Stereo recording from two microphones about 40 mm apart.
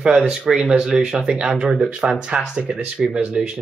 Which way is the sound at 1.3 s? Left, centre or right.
Right.